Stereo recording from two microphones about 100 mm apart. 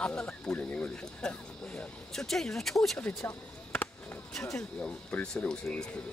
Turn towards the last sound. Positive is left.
turn(degrees=10)  # may be behind; listen again after turning